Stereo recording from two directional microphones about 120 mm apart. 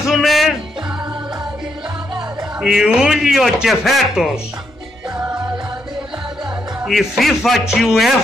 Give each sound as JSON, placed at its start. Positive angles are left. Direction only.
{"t": 0.0, "sound": "music", "side_deg": 0}
{"t": 2.6, "sound": "a man's voice", "side_deg": -5}
{"t": 5.1, "sound": "music", "side_deg": -35}
{"t": 6.8, "sound": "a man's voice", "side_deg": -5}